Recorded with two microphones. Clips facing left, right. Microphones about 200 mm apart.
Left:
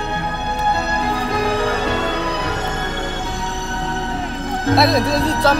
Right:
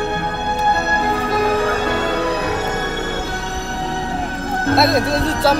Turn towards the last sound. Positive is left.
turn(degrees=-5)  # may be behind; listen again after turning